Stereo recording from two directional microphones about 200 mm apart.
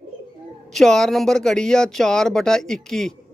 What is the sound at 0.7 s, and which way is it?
Speech, centre (ahead or behind).